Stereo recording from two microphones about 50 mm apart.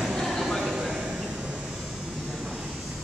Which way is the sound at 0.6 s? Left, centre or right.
Centre.